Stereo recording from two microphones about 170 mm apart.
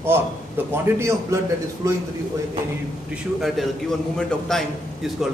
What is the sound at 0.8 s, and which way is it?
A man's voice, 15° right (ahead or behind).